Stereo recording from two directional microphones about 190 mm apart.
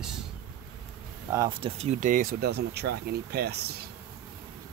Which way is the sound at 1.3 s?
25° right (ahead or behind).